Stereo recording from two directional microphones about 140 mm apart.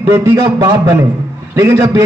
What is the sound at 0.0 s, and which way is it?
A man's voice, 20° right (ahead or behind).